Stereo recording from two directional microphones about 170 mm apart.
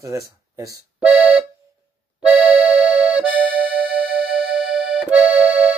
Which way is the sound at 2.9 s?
5° right (ahead or behind).